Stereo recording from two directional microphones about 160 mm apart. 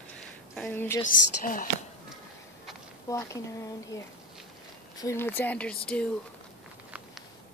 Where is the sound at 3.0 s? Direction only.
20° left (ahead or behind).